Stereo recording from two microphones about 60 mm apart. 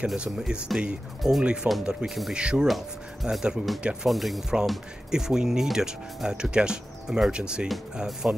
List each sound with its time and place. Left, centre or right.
0.0 s speech: centre